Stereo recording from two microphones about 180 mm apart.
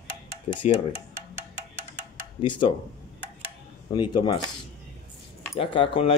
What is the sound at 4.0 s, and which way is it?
Speech, 25° left (ahead or behind).